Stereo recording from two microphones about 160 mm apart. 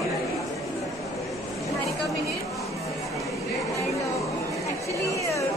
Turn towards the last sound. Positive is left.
turn(degrees=20)  # may be behind; listen again after turning